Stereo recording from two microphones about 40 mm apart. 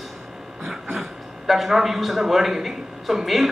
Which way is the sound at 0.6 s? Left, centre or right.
Centre.